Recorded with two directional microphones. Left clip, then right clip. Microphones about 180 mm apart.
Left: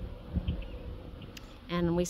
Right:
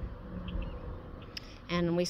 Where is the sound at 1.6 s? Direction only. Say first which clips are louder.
Even; 10° left (ahead or behind).